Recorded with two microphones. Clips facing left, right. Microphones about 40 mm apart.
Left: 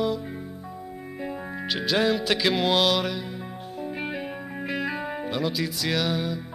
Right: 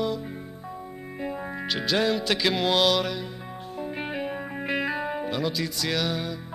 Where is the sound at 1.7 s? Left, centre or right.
Centre.